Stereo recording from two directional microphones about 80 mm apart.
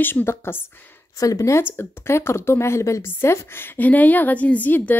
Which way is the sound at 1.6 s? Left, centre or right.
Left.